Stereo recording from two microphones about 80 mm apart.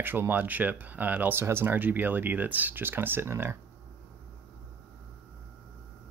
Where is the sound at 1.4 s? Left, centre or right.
Right.